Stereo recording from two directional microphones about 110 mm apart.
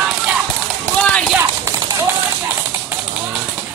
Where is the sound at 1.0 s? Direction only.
15° left (ahead or behind).